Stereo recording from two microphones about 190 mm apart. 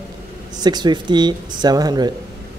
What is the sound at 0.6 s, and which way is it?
A man's voice, 20° right (ahead or behind).